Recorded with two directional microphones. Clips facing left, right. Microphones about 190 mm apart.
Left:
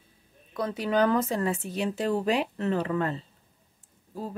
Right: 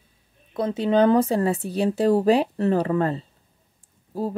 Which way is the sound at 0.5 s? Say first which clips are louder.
Right 6 dB; 25° right (ahead or behind).